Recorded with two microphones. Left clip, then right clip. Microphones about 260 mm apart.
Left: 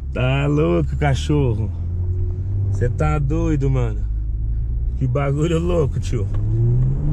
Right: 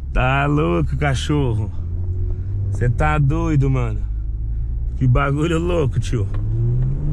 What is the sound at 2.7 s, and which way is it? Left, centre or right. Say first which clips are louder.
Speech: right 3 dB; right.